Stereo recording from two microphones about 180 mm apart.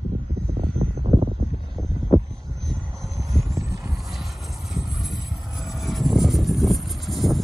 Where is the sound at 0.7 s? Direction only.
30° right (ahead or behind).